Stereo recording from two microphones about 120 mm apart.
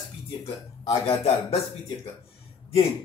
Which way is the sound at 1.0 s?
55° left (ahead or behind).